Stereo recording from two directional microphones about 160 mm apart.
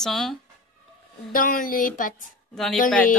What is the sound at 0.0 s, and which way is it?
Speech, centre (ahead or behind).